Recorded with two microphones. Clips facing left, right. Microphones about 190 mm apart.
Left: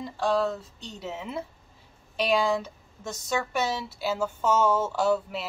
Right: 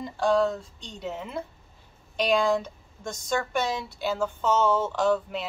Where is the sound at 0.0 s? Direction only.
Centre (ahead or behind).